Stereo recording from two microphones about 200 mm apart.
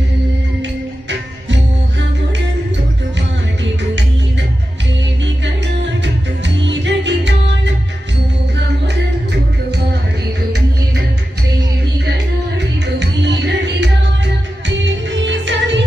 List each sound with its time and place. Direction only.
6.0 s music: 65° right (ahead or behind)
12.1 s music: 60° right (ahead or behind)